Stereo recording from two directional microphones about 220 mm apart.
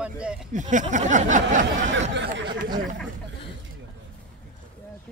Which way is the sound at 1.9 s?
55° right (ahead or behind).